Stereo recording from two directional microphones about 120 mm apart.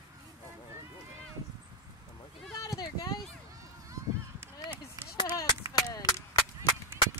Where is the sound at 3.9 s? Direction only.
20° right (ahead or behind).